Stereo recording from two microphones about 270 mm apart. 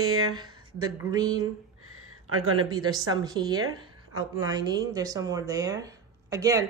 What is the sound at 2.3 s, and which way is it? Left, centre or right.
Speech, right.